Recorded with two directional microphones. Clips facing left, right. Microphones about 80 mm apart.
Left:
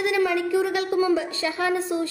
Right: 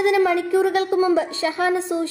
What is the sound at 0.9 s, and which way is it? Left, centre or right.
A woman's voice, right.